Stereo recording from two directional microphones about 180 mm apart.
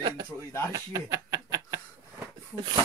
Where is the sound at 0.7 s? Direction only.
20° right (ahead or behind).